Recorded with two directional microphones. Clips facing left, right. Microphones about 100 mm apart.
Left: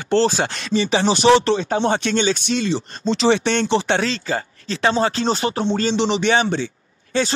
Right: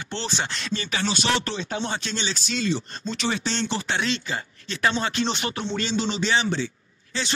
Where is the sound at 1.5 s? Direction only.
50° left (ahead or behind); by 3.9 s 65° left (ahead or behind).